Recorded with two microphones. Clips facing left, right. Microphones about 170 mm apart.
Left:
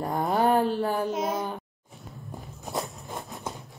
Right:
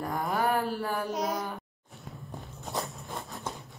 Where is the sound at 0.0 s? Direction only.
30° left (ahead or behind).